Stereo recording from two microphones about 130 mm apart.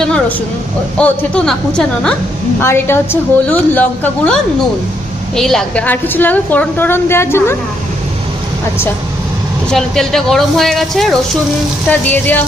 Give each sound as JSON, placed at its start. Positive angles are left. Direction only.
{"t": 0.9, "sound": "a woman's voice", "side_deg": 10}
{"t": 2.6, "sound": "a woman's voice", "side_deg": 20}
{"t": 5.9, "sound": "a woman's voice", "side_deg": 15}
{"t": 9.7, "sound": "speech", "side_deg": 5}
{"t": 11.9, "sound": "a woman's voice", "side_deg": 15}